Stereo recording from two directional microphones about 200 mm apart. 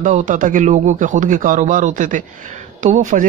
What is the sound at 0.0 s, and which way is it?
Speech, 40° right (ahead or behind).